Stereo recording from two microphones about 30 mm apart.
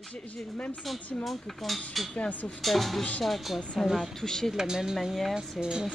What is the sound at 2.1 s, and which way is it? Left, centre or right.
Speech, left.